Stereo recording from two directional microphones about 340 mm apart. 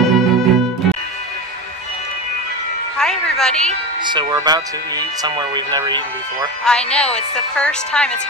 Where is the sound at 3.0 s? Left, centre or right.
Centre.